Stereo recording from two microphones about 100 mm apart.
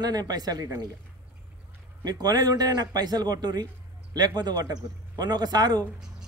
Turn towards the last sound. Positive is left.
turn(degrees=-45)  # may be behind; listen again after turning